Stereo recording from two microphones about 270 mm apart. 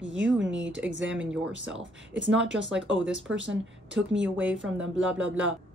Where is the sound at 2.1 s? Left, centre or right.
Right.